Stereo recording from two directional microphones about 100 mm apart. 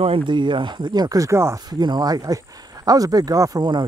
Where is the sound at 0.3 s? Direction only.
50° right (ahead or behind); by 1.6 s 30° right (ahead or behind).